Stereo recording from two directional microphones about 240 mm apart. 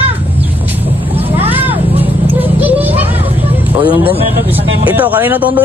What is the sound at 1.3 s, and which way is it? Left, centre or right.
Vehicle, centre.